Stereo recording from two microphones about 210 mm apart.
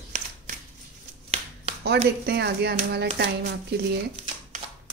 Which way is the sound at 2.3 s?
50° right (ahead or behind).